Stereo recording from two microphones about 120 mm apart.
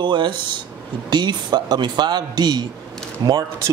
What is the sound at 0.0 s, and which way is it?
Speech, 40° right (ahead or behind).